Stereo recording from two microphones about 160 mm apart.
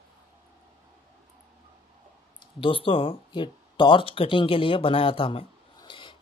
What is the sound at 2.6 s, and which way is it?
Speech, 35° left (ahead or behind).